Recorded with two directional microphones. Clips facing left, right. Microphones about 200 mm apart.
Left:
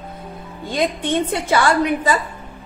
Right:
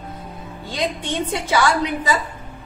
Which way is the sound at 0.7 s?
55° left (ahead or behind).